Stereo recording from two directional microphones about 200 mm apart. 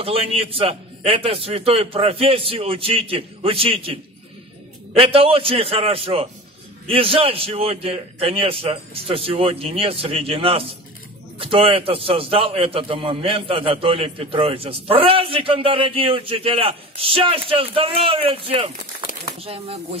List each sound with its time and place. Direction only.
0.0 s a man's voice: 30° right (ahead or behind)